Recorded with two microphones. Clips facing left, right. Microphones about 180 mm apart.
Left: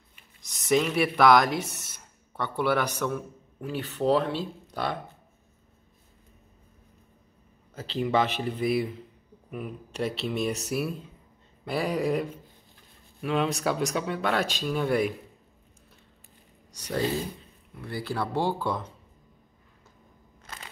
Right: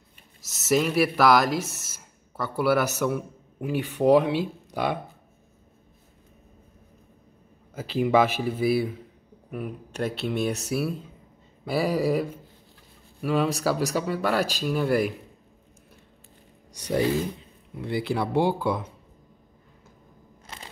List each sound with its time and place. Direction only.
0.4 s speech: 5° right (ahead or behind)
7.7 s a man's voice: 10° right (ahead or behind)
17.7 s a man's voice: 20° right (ahead or behind)